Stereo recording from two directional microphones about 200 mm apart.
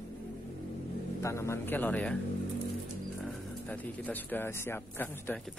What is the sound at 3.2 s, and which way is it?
Speech, centre (ahead or behind).